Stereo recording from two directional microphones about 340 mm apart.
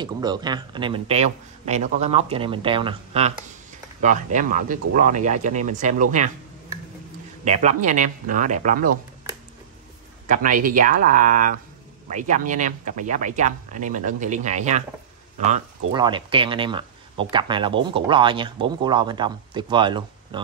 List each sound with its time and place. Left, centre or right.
0.0 s a man's voice: centre
7.4 s speech: right
10.2 s a man's voice: right